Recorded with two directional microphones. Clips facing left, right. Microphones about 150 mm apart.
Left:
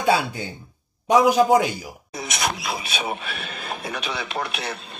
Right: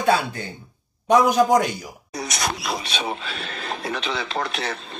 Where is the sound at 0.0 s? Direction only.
10° left (ahead or behind).